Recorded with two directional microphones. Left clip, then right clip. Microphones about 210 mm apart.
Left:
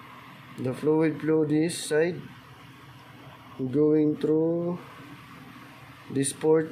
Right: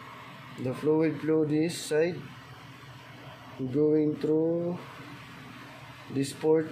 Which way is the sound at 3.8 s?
20° left (ahead or behind).